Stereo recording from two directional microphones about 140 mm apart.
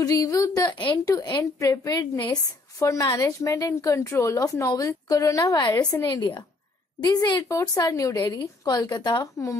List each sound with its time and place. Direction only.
0.0 s a woman's voice: 25° left (ahead or behind)